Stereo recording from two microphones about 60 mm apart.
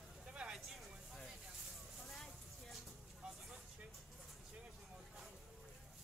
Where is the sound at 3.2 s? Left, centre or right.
Centre.